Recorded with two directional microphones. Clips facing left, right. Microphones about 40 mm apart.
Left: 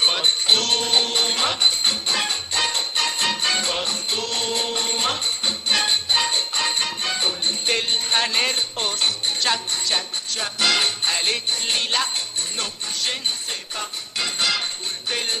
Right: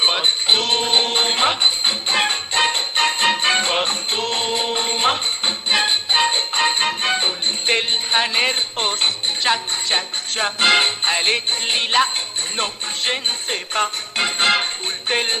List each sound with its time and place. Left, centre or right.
0.0 s music: right
8.7 s music: right
9.4 s jingle bell: right
12.5 s music: right